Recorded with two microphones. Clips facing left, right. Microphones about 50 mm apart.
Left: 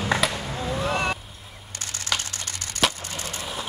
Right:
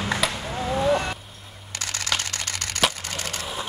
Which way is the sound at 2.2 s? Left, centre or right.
Right.